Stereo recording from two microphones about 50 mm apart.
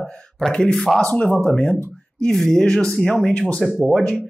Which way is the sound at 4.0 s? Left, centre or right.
Left.